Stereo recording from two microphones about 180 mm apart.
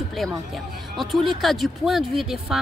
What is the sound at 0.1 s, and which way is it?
Speech, centre (ahead or behind).